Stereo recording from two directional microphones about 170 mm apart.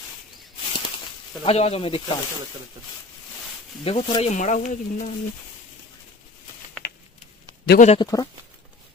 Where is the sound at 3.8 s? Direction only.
35° left (ahead or behind).